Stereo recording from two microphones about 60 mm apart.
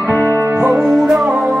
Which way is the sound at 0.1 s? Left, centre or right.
Right.